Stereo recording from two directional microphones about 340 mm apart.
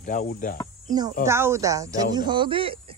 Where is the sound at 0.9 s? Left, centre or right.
Centre.